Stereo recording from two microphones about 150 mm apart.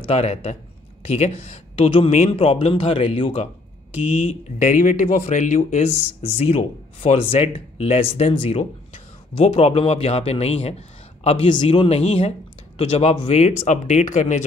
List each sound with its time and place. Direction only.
0.0 s speech: 40° left (ahead or behind)
4.6 s speech: 60° left (ahead or behind)
6.2 s speech: 40° left (ahead or behind)